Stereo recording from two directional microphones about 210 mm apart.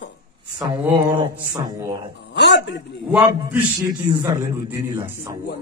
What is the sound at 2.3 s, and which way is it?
Speech, 55° left (ahead or behind).